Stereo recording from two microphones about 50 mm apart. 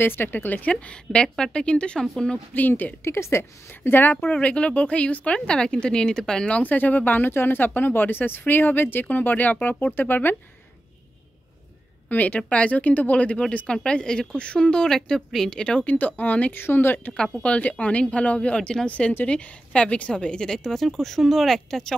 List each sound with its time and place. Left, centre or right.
0.0 s speech: left; by 2.4 s centre
3.0 s a woman's voice: left
4.3 s speech: left
6.5 s speech: left
12.1 s speech: left; by 15.0 s centre
15.0 s a woman's voice: centre
15.5 s speech: centre
15.8 s speech: left
16.5 s a woman's voice: left
17.4 s speech: left; by 21.9 s centre